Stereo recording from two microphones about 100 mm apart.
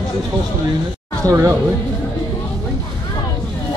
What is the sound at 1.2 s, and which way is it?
Speech, 30° right (ahead or behind).